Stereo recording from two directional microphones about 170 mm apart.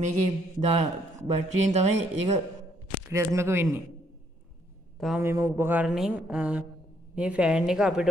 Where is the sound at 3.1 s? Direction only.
15° right (ahead or behind).